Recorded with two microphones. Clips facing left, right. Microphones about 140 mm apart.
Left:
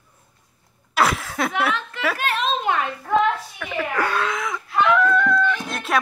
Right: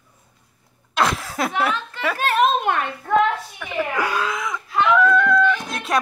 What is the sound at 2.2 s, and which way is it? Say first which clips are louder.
Children playing: right 8 dB; 45° right (ahead or behind).